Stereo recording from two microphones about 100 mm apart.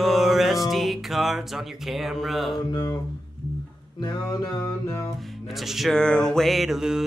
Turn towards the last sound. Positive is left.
turn(degrees=-5)  # may be behind; listen again after turning